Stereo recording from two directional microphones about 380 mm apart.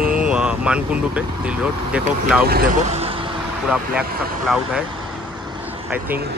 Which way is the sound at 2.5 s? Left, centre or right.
Right.